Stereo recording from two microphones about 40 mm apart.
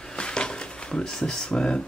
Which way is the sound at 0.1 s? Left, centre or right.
Left.